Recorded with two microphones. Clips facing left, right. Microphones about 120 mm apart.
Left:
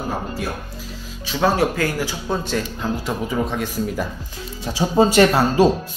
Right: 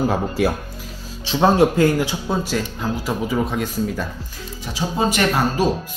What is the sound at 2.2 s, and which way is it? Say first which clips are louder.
Speech: right 1 dB; 5° right (ahead or behind).